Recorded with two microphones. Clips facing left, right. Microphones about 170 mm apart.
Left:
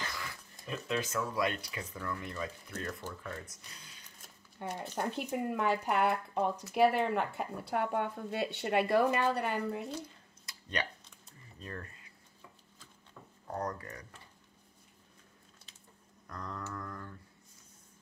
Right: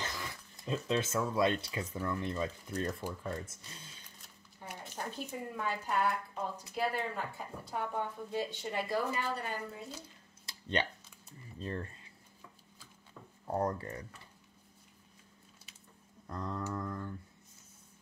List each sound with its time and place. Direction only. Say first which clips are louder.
0.7 s speech: right 3 dB; 25° right (ahead or behind)
3.0 s speech: right 3 dB; 15° right (ahead or behind)
3.4 s speech: right 3 dB; 25° right (ahead or behind)
4.6 s speech: left 7 dB; 70° left (ahead or behind)
10.4 s a sound: right 3 dB; 25° right (ahead or behind)
11.6 s speech: right 5 dB; 30° right (ahead or behind)
13.5 s speech: right 4 dB; 25° right (ahead or behind)
16.3 s speech: right 4 dB; 25° right (ahead or behind)